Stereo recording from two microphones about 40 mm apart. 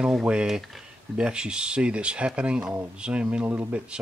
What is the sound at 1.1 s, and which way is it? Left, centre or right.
Speech, right.